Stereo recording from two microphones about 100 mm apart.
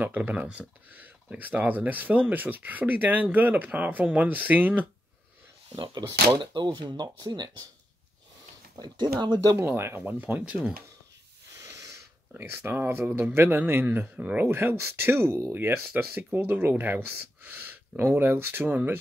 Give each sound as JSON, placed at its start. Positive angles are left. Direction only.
{"t": 0.0, "sound": "speech", "side_deg": -15}
{"t": 5.8, "sound": "speech", "side_deg": -45}
{"t": 8.7, "sound": "speech", "side_deg": -45}
{"t": 9.6, "sound": "speech", "side_deg": -25}
{"t": 11.6, "sound": "a sound", "side_deg": -30}
{"t": 12.4, "sound": "speech", "side_deg": -20}